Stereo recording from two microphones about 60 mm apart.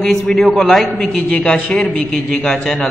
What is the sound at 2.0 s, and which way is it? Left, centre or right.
Mantra, centre.